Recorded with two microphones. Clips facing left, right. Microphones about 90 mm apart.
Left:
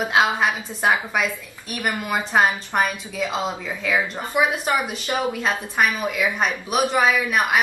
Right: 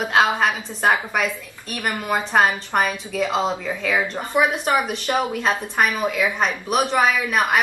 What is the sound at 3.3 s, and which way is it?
Speech, 20° right (ahead or behind).